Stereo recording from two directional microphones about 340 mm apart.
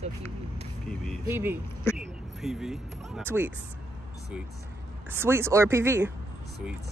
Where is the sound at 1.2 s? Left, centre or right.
Centre.